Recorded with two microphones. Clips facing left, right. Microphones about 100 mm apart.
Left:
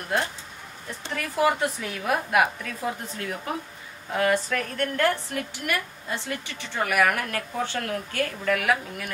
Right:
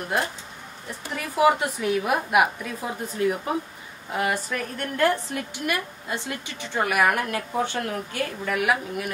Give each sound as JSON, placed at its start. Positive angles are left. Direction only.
{"t": 1.1, "sound": "a woman's voice", "side_deg": -15}